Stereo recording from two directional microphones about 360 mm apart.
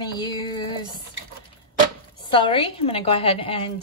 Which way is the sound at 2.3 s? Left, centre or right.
Centre.